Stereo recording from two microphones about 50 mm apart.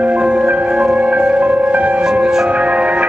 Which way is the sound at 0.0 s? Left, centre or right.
Right.